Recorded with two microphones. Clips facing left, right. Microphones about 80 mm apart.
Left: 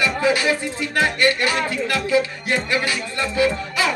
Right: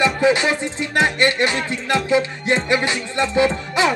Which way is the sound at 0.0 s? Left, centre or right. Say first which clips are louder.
Right 3 dB; right.